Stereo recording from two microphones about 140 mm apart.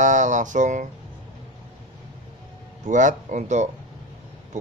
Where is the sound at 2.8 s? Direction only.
60° right (ahead or behind).